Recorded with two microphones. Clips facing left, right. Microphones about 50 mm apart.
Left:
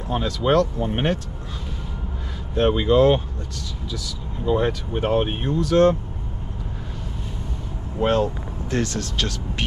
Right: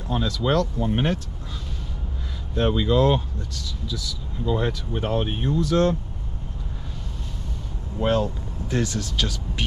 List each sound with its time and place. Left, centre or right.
0.1 s speech: left
2.5 s speech: left
8.0 s speech: left